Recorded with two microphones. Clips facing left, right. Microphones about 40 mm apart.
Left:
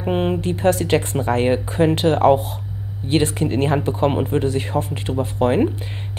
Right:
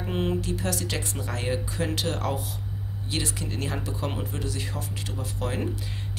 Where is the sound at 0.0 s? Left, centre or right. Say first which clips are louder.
Left 8 dB; left.